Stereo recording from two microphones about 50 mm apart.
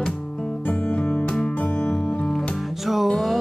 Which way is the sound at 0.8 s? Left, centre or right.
Left.